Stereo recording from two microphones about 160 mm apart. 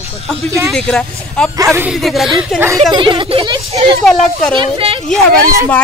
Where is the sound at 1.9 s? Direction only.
Centre (ahead or behind).